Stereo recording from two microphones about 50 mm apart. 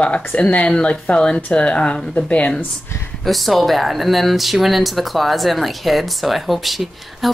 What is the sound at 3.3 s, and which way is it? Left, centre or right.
Speech, centre.